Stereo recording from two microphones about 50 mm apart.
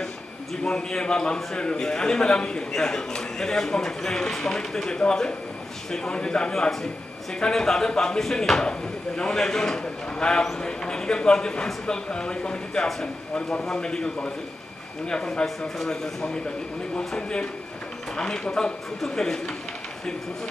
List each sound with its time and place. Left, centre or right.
0.7 s a man's voice: centre